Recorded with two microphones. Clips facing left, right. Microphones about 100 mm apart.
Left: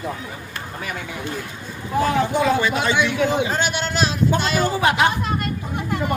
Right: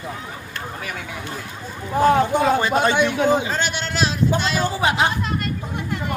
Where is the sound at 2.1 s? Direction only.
40° right (ahead or behind).